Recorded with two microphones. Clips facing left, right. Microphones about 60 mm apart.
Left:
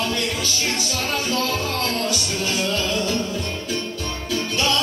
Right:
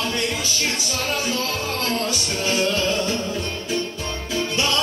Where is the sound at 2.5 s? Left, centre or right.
Right.